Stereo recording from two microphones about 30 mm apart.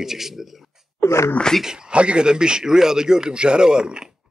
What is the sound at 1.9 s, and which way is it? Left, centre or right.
A man's voice, right.